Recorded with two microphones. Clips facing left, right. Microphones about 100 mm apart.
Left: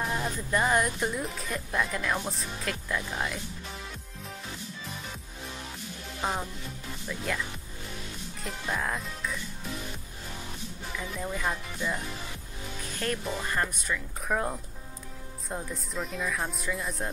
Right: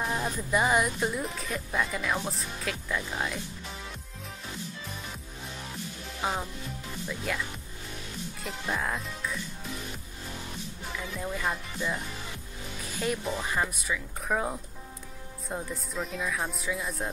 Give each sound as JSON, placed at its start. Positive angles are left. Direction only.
{"t": 0.0, "sound": "speech", "side_deg": -5}
{"t": 6.2, "sound": "speech", "side_deg": -5}
{"t": 8.5, "sound": "speech", "side_deg": 0}
{"t": 11.1, "sound": "speech", "side_deg": 0}
{"t": 13.0, "sound": "speech", "side_deg": -5}